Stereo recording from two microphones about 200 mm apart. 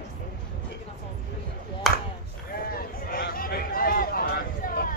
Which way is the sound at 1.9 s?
Centre (ahead or behind).